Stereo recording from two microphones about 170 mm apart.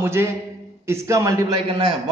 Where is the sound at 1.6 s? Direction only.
30° right (ahead or behind).